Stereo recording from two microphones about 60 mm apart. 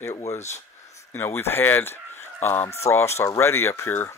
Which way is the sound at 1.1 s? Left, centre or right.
Left.